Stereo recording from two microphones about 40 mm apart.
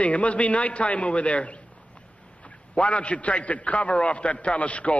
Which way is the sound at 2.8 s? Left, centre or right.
Left.